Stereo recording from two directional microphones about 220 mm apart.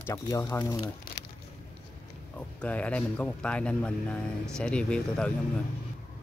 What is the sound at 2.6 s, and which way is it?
Speech, 5° left (ahead or behind).